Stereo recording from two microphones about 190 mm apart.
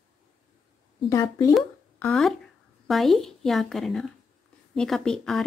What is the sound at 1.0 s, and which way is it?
Speech, 15° left (ahead or behind).